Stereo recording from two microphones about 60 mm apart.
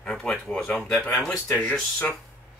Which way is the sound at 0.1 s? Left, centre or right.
Centre.